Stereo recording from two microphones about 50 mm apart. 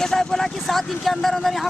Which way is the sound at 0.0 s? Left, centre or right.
Centre.